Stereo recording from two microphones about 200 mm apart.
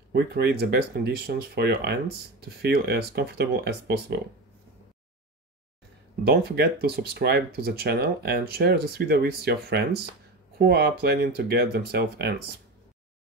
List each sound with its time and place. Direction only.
0.1 s speech: 55° right (ahead or behind)
6.2 s speech: 55° right (ahead or behind)